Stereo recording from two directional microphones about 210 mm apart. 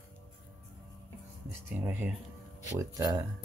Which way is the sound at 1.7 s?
10° right (ahead or behind).